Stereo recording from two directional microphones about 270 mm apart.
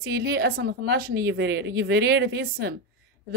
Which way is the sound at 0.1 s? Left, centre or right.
Right.